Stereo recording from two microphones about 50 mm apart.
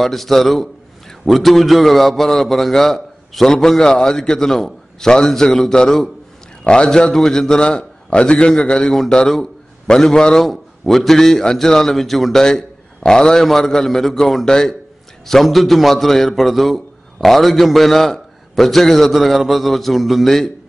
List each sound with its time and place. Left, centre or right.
0.0 s a man's voice: centre
10.4 s a man's voice: centre